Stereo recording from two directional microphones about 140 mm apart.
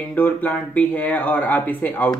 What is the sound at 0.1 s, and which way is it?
Speech, 15° left (ahead or behind).